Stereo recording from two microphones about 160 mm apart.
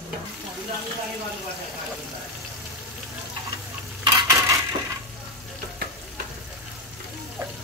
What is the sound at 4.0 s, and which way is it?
Cutlery, 20° right (ahead or behind).